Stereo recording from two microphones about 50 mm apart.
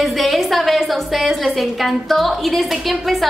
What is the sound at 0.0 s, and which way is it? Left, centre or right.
A woman's voice, centre.